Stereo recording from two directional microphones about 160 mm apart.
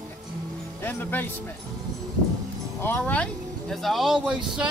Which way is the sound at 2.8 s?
10° left (ahead or behind).